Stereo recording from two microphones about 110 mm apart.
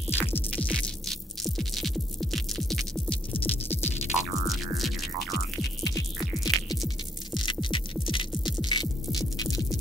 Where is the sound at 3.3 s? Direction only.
15° left (ahead or behind).